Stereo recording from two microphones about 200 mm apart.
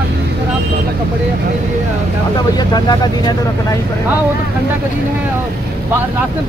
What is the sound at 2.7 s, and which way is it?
Speech, 20° left (ahead or behind).